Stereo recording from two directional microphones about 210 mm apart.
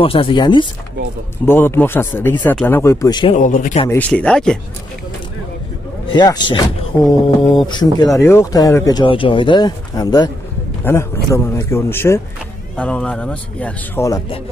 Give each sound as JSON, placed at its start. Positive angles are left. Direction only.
{"t": 0.0, "sound": "speech", "side_deg": 25}
{"t": 1.4, "sound": "speech", "side_deg": 10}
{"t": 3.3, "sound": "speech", "side_deg": 35}
{"t": 3.9, "sound": "speech", "side_deg": 5}
{"t": 6.1, "sound": "speech", "side_deg": 20}